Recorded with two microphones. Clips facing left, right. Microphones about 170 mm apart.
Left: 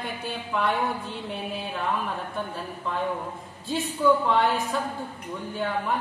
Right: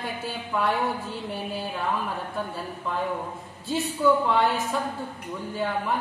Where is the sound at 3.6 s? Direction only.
Centre (ahead or behind).